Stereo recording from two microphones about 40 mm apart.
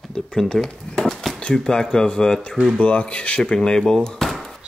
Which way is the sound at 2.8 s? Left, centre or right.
Left.